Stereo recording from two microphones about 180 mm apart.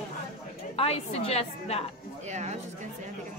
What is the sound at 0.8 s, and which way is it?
A woman's voice, 35° left (ahead or behind).